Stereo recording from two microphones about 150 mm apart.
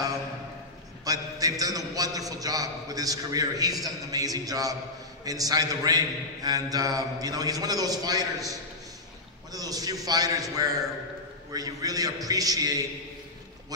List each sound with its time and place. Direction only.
1.0 s a man's voice: 25° right (ahead or behind)
9.5 s a man's voice: 25° right (ahead or behind)